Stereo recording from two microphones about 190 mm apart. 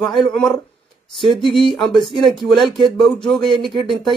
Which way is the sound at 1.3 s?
Centre (ahead or behind).